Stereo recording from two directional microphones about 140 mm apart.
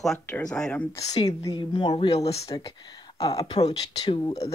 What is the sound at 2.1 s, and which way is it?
Speech, 45° left (ahead or behind).